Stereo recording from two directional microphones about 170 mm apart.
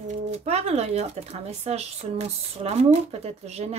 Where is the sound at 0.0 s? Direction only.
45° right (ahead or behind).